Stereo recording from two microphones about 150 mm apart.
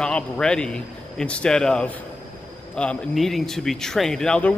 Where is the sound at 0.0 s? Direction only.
5° left (ahead or behind).